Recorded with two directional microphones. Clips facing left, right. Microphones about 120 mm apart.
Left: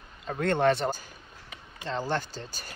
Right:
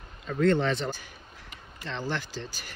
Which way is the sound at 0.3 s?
50° left (ahead or behind).